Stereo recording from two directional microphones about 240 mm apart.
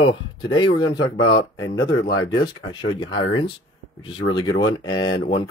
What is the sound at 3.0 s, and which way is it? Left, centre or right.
Speech, centre.